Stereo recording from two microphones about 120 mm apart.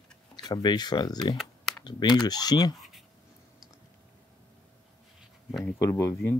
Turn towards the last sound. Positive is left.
turn(degrees=25)  # may be behind; listen again after turning